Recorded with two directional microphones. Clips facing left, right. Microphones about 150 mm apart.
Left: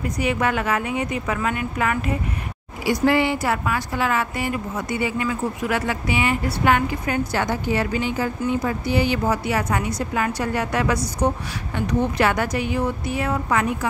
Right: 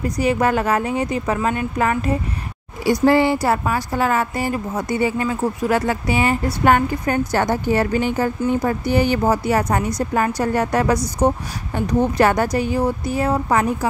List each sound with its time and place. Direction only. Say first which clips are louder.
0.0 s a woman's voice: right 4 dB; 35° right (ahead or behind)